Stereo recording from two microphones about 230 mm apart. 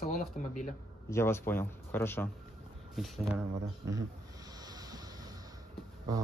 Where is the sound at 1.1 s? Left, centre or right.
Centre.